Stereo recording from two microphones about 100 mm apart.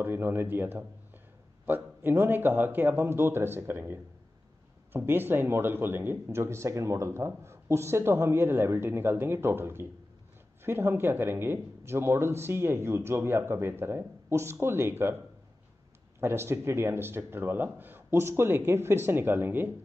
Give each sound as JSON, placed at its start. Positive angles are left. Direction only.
{"t": 0.0, "sound": "speech", "side_deg": -20}
{"t": 16.2, "sound": "speech", "side_deg": -25}